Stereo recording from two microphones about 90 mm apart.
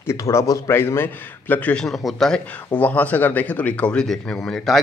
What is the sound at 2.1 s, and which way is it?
A man's voice, 5° left (ahead or behind).